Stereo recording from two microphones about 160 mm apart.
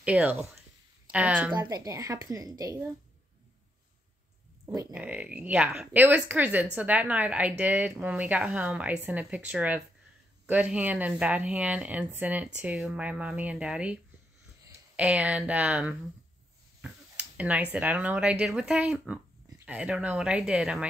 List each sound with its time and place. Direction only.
0.0 s speech: 5° right (ahead or behind)
1.5 s a woman's voice: 25° right (ahead or behind)
4.6 s speech: 10° right (ahead or behind)
15.0 s speech: 10° right (ahead or behind)
16.8 s a sound: 10° right (ahead or behind)
17.7 s speech: 10° right (ahead or behind)